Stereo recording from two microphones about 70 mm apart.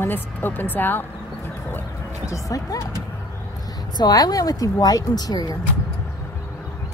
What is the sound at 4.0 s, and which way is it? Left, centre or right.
Speech, left.